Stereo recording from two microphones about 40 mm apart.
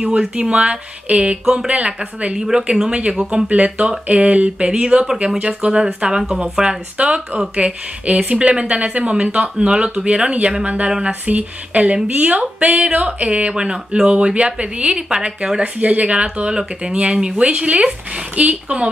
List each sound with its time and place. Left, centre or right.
0.4 s speech: right
2.3 s speech: centre
5.7 s speech: centre